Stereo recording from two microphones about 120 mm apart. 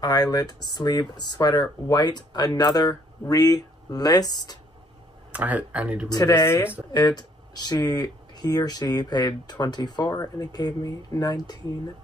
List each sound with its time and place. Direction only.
0.0 s speech: 35° left (ahead or behind)
5.3 s speech: 10° right (ahead or behind)
6.0 s speech: 35° left (ahead or behind)
6.3 s speech: 20° left (ahead or behind)
6.9 s speech: 35° left (ahead or behind)